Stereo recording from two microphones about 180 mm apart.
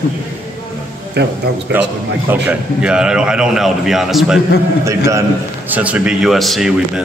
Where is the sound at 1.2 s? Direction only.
65° right (ahead or behind).